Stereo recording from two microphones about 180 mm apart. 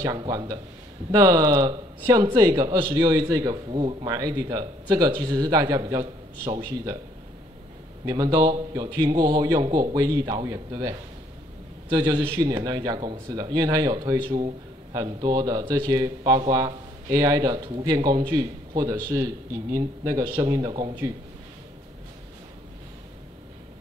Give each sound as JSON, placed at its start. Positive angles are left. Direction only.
{"t": 0.0, "sound": "a man's voice", "side_deg": -20}
{"t": 8.0, "sound": "a man's voice", "side_deg": -20}